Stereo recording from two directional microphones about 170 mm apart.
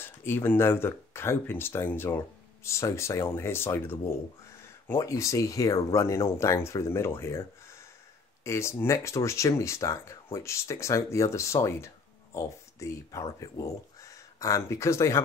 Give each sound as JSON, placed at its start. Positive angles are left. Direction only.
{"t": 0.0, "sound": "speech", "side_deg": 15}
{"t": 8.5, "sound": "speech", "side_deg": 15}